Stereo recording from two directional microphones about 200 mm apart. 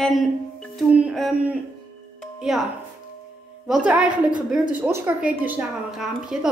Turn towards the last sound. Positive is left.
turn(degrees=-5)  # may be behind; listen again after turning